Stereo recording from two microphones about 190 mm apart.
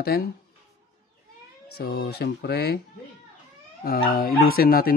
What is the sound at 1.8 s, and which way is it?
Speech, 55° left (ahead or behind).